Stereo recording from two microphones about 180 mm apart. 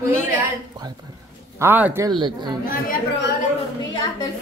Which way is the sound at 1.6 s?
10° right (ahead or behind).